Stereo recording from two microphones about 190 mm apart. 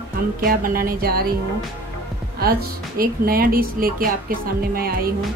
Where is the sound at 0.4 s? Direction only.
50° right (ahead or behind).